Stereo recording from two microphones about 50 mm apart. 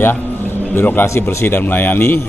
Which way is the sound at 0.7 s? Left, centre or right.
Left.